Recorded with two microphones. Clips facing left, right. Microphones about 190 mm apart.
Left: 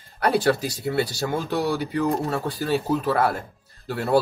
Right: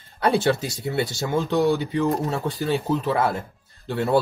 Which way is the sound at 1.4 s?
20° right (ahead or behind).